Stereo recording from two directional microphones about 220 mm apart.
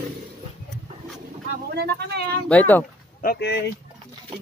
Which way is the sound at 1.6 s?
45° right (ahead or behind).